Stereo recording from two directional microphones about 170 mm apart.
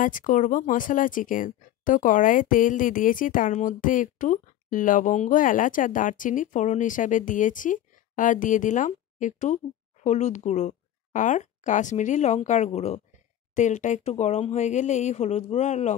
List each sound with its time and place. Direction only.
0.0 s speech: 50° left (ahead or behind)